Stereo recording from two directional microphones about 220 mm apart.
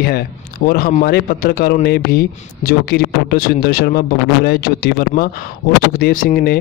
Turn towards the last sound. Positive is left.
turn(degrees=40)  # may be behind; listen again after turning